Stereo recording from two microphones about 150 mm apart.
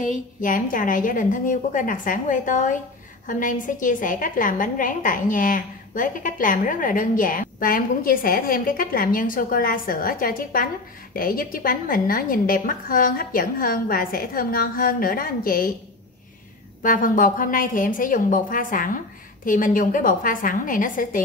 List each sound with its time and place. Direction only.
0.0 s a woman's voice: 60° left (ahead or behind)
16.8 s a woman's voice: 65° left (ahead or behind)